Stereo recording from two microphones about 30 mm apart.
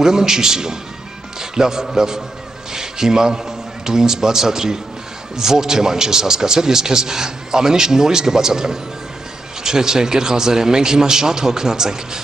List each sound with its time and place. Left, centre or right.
0.0 s a man's voice: centre